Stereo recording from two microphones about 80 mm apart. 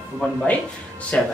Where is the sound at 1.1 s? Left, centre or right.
Centre.